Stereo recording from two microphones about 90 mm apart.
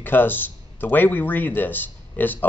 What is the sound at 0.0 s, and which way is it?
Speech, 20° left (ahead or behind).